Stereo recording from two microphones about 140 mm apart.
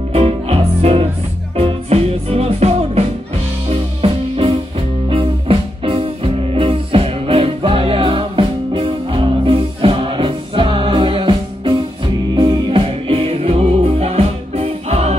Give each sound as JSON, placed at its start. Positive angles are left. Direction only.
{"t": 0.1, "sound": "music", "side_deg": -45}